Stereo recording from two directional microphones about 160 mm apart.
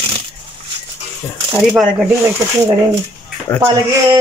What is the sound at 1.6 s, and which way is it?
Speech, centre (ahead or behind).